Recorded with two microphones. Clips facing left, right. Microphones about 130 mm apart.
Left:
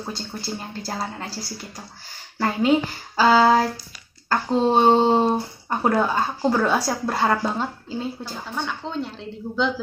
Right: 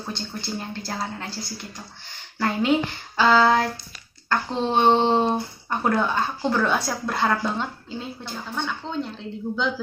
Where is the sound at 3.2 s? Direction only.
5° left (ahead or behind).